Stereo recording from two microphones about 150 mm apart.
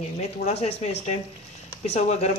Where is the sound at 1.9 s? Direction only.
50° left (ahead or behind).